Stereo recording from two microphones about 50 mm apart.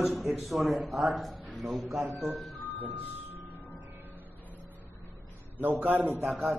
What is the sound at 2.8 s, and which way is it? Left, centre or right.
Speech, right.